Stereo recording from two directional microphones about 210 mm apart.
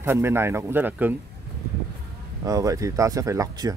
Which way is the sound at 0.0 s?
10° right (ahead or behind).